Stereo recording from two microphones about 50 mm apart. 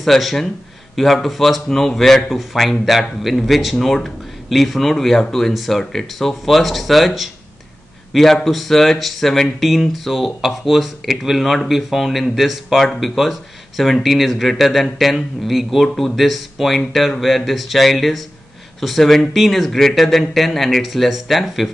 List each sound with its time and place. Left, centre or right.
0.0 s a man's voice: centre